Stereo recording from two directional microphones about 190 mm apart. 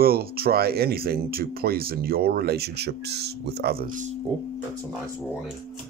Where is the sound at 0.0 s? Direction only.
55° right (ahead or behind).